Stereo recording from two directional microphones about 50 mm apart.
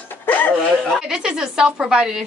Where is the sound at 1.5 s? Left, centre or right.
Centre.